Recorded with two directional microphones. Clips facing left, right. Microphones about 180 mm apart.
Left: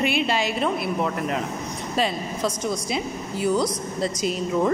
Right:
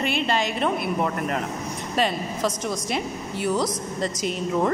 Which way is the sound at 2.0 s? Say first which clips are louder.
Right 1 dB; centre (ahead or behind).